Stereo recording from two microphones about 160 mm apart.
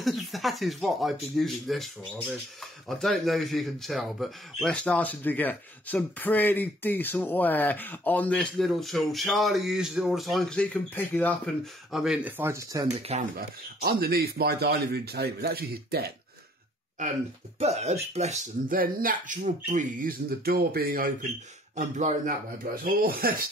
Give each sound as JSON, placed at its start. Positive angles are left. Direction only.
{"t": 0.0, "sound": "speech", "side_deg": 0}
{"t": 11.9, "sound": "speech", "side_deg": -5}
{"t": 13.0, "sound": "speech", "side_deg": -45}
{"t": 13.4, "sound": "speech", "side_deg": -65}
{"t": 17.6, "sound": "speech", "side_deg": -40}
{"t": 18.7, "sound": "speech", "side_deg": -60}
{"t": 21.7, "sound": "speech", "side_deg": -50}
{"t": 22.8, "sound": "speech", "side_deg": -65}